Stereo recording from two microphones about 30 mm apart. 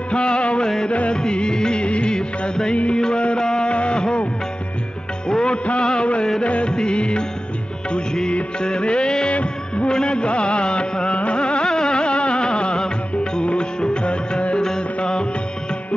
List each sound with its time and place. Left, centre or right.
0.1 s music: left
1.1 s music: left
1.8 s music of bollywood: left
2.1 s music of bollywood: left
2.7 s music: left
3.3 s a sound: left
3.7 s a sound: left
5.3 s music: left
6.7 s music: left
8.5 s music: left
9.3 s music of bollywood: left
9.8 s music: left